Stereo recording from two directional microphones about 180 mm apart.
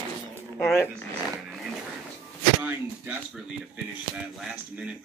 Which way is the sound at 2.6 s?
10° right (ahead or behind).